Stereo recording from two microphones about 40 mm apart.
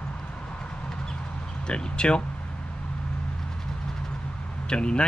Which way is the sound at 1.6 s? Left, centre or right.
Left.